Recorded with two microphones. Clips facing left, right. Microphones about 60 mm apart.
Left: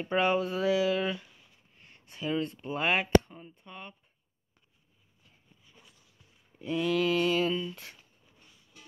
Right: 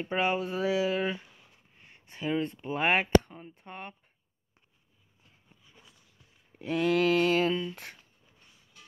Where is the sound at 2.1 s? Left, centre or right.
Right.